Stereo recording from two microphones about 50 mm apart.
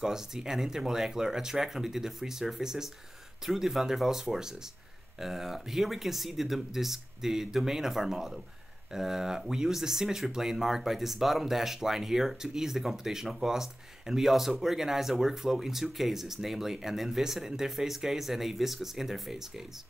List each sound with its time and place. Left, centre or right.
0.0 s speech: centre